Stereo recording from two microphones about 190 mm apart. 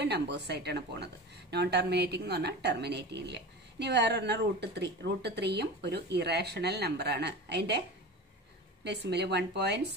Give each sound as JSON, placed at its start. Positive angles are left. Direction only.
{"t": 0.0, "sound": "a woman's voice", "side_deg": -60}
{"t": 8.8, "sound": "a woman's voice", "side_deg": -65}